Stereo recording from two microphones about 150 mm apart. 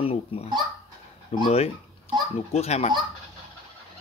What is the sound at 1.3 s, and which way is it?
Speech, 45° left (ahead or behind).